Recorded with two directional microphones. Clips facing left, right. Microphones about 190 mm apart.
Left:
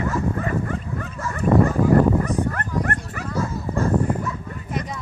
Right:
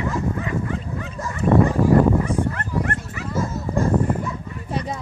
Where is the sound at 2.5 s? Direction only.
50° left (ahead or behind).